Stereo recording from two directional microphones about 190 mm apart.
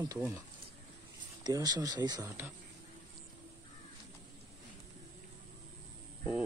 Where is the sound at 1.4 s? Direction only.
20° right (ahead or behind).